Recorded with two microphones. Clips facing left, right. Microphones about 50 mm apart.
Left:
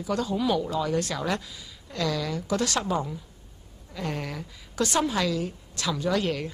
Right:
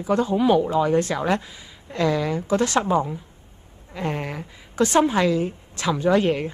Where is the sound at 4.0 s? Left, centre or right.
Right.